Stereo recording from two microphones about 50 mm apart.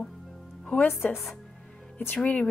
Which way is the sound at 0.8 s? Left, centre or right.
Left.